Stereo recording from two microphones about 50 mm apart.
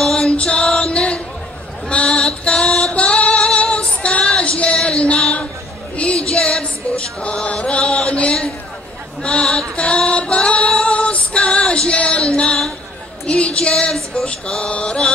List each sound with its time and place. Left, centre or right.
0.0 s music: centre
1.9 s female singing: left
5.9 s music: left
6.6 s chant: left
9.2 s a sound: centre
9.8 s female singing: left
13.3 s a sound: left
14.2 s mantra: left